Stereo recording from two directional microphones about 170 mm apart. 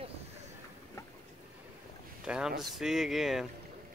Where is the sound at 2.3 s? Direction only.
5° right (ahead or behind).